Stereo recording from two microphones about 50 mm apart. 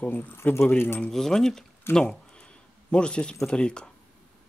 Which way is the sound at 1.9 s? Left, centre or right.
Centre.